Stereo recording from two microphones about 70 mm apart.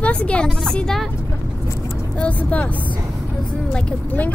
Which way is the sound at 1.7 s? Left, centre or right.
Left.